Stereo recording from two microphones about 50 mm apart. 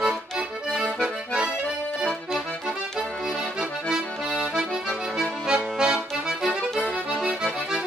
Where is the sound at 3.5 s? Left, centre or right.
Centre.